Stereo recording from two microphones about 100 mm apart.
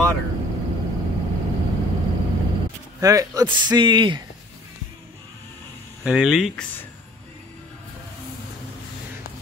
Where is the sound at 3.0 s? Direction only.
35° right (ahead or behind).